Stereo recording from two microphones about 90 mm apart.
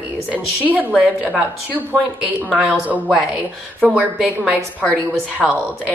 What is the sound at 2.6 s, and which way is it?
Speech, 15° right (ahead or behind).